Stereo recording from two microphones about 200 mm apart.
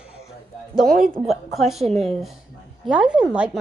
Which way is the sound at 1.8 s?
30° right (ahead or behind).